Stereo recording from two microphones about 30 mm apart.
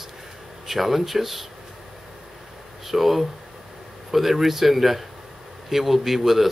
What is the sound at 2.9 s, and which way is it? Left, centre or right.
Speech, centre.